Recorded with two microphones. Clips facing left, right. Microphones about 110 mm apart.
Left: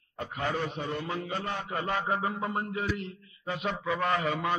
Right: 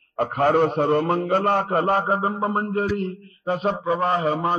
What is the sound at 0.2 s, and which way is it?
A man's voice, 55° right (ahead or behind).